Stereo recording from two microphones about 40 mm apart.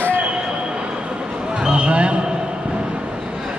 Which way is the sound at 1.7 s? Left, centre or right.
Right.